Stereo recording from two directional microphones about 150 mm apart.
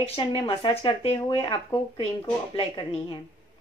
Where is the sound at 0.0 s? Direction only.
40° left (ahead or behind).